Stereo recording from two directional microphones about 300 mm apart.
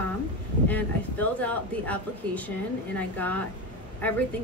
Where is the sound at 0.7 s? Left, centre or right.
Centre.